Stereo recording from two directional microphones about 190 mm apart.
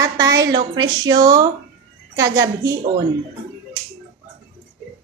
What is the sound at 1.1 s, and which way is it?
A woman's voice, 15° right (ahead or behind).